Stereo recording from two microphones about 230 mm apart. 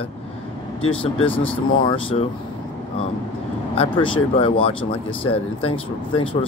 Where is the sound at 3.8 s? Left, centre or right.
Left.